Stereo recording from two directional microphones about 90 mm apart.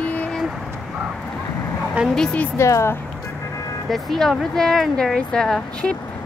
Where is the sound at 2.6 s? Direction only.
30° left (ahead or behind).